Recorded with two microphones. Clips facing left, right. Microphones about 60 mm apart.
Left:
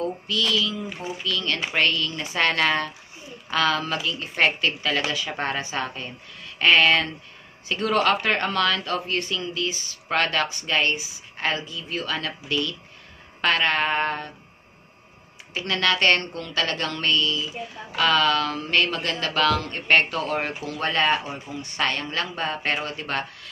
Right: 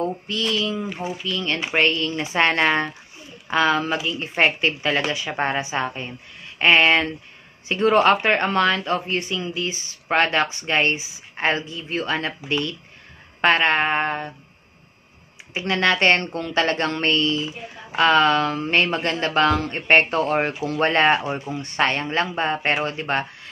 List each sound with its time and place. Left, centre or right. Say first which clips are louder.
0.0 s speech: right 1 dB; right
15.5 s speech: right 3 dB; right